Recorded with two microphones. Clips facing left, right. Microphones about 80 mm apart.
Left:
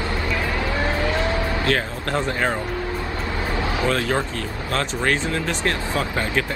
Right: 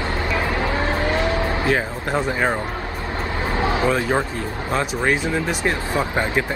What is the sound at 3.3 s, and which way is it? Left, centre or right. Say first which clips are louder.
Vehicle: right 4 dB; right.